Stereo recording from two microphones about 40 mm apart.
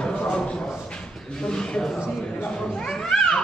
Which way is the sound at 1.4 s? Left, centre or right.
Left.